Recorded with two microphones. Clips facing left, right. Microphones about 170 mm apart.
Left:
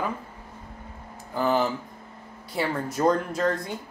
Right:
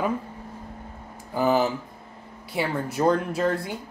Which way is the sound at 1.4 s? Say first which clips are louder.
Right 2 dB; 10° right (ahead or behind).